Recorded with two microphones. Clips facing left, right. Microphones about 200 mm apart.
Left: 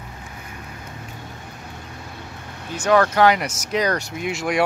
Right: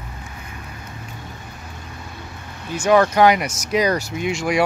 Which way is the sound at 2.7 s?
10° right (ahead or behind).